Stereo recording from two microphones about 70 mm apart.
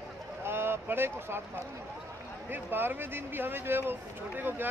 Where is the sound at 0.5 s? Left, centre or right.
Right.